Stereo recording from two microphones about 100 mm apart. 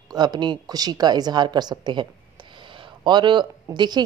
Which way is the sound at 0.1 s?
45° right (ahead or behind).